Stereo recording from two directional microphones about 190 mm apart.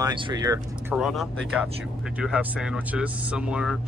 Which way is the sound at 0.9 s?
Centre (ahead or behind).